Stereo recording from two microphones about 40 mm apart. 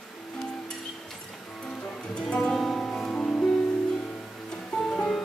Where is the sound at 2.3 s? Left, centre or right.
Centre.